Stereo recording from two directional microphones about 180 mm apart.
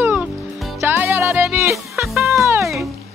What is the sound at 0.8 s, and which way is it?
Music, 10° right (ahead or behind).